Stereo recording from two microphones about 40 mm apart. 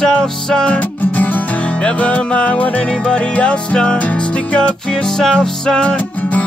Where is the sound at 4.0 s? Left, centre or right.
Left.